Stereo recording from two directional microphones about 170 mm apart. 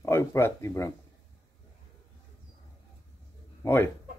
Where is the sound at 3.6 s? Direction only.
15° left (ahead or behind).